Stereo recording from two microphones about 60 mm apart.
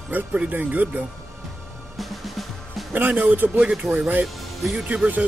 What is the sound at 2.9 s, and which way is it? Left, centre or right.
Speech, right.